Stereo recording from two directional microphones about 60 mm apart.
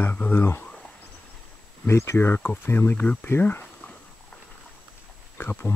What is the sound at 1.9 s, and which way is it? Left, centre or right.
Speech, left.